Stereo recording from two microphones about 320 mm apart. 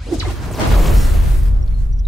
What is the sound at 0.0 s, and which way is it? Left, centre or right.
Music, centre.